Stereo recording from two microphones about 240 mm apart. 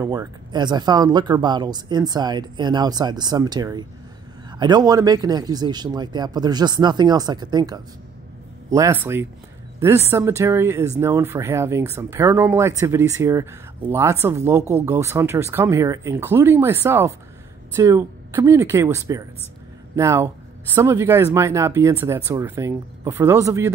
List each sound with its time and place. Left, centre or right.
0.0 s speech: centre